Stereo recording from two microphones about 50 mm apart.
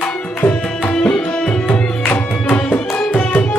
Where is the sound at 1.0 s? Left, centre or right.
Left.